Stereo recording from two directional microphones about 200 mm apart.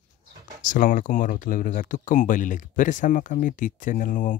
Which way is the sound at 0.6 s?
40° left (ahead or behind).